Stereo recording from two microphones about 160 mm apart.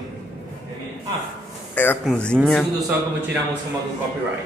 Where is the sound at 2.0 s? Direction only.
5° left (ahead or behind).